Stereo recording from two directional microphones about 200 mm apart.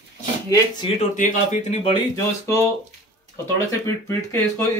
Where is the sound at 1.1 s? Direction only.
40° left (ahead or behind).